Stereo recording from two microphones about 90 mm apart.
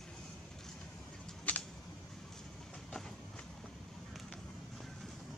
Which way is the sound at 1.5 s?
15° left (ahead or behind).